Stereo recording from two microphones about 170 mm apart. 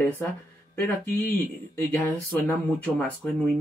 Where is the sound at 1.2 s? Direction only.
10° left (ahead or behind).